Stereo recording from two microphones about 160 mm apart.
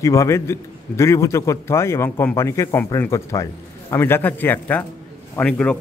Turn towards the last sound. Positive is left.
turn(degrees=5)  # may be behind; listen again after turning